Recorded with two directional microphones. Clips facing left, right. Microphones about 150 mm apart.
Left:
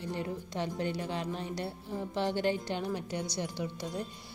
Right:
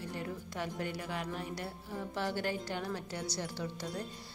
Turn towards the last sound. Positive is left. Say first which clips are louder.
# left 3 dB
turn(degrees=10)  # may be behind; listen again after turning